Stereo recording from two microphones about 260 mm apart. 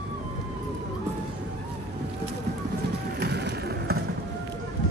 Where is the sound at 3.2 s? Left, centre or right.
Right.